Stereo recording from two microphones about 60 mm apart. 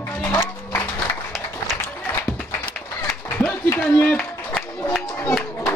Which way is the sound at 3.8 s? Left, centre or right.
Left.